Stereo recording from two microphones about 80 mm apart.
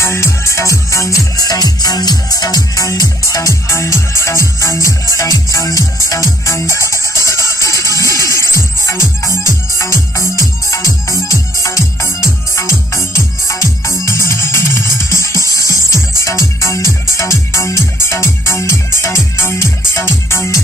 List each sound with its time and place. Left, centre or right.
0.0 s music: left
17.2 s music: left